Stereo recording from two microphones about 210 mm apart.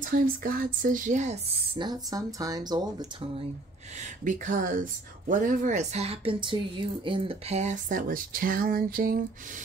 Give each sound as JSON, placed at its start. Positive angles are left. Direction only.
{"t": 0.0, "sound": "speech", "side_deg": -40}
{"t": 1.8, "sound": "speech", "side_deg": -20}
{"t": 4.2, "sound": "speech", "side_deg": -40}